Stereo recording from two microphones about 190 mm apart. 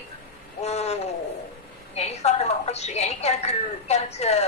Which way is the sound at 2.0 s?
35° left (ahead or behind).